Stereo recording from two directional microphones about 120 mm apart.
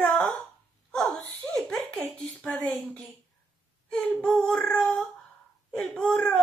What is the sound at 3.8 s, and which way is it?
Speech, 10° left (ahead or behind).